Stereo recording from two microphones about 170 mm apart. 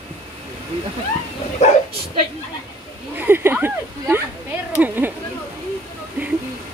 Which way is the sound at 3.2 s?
10° right (ahead or behind).